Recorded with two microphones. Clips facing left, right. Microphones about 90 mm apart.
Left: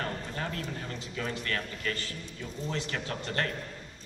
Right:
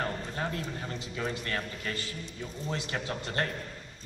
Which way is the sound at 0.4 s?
25° right (ahead or behind).